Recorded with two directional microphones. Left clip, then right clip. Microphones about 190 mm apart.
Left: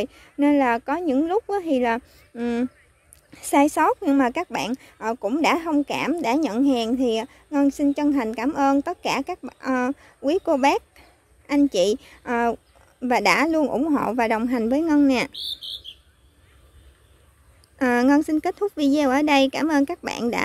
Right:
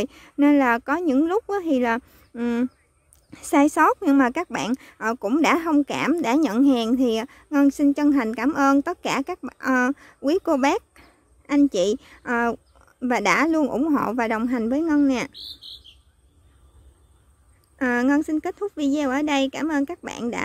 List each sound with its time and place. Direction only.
0.0 s speech: 20° right (ahead or behind)
17.7 s speech: centre (ahead or behind)